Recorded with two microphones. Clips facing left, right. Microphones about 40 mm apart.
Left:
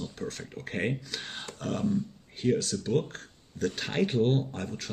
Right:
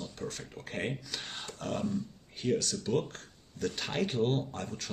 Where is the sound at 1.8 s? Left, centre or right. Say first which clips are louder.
Left 5 dB; left.